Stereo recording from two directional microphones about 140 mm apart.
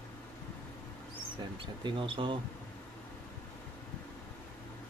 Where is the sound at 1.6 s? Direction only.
35° right (ahead or behind).